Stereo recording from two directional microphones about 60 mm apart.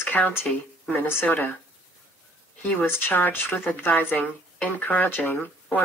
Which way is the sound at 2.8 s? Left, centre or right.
Left.